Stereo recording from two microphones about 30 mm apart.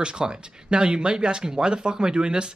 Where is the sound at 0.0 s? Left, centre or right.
Right.